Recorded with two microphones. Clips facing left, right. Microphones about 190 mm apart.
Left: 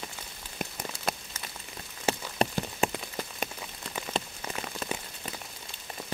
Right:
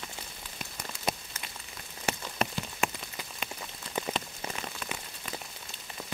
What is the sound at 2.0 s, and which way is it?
Rain on surface, 35° left (ahead or behind).